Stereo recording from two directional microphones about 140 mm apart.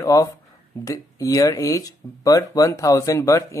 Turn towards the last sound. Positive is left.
turn(degrees=25)  # may be behind; listen again after turning